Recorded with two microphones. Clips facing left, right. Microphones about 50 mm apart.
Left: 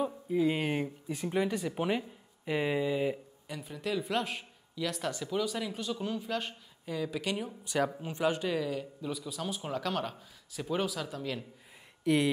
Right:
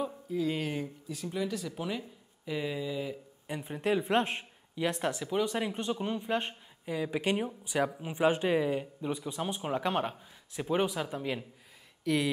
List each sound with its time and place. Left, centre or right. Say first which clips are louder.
0.3 s speech: left 3 dB; left
3.4 s speech: right 5 dB; right
5.1 s speech: right 1 dB; centre
5.4 s speech: right 5 dB; right
12.0 s speech: left 2 dB; centre